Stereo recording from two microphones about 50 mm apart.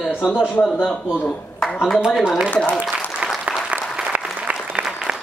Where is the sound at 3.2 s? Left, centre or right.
Centre.